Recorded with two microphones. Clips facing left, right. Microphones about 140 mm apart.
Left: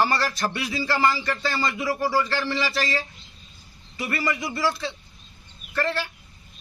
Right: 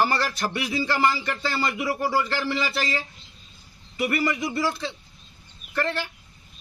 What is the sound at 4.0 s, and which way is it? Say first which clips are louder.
Speech: right 3 dB; 20° right (ahead or behind).